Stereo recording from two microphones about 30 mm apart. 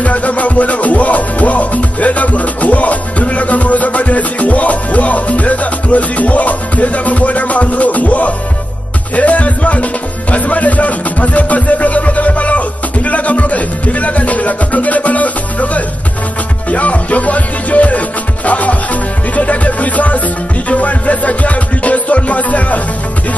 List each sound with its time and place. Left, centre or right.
0.0 s music: left
9.1 s speech: left
10.3 s music: left